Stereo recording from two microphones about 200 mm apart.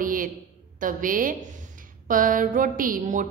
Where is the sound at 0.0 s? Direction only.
45° right (ahead or behind).